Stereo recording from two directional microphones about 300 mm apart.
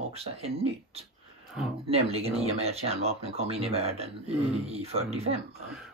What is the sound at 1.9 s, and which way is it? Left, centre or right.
Speech, centre.